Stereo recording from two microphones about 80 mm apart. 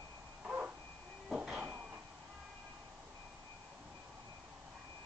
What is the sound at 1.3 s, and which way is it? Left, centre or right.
Cupboard open or close, centre.